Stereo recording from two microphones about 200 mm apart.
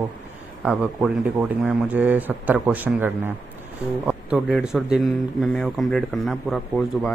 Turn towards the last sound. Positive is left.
turn(degrees=0)  # may be behind; listen again after turning